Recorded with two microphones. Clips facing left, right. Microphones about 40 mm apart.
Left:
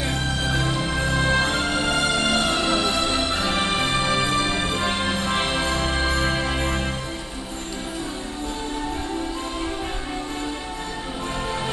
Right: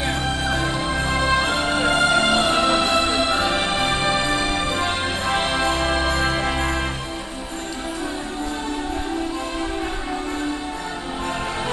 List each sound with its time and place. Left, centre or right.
0.0 s music: right